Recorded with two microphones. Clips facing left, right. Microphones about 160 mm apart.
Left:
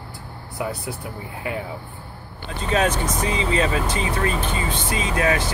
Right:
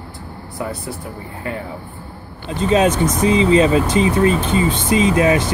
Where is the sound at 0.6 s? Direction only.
5° left (ahead or behind).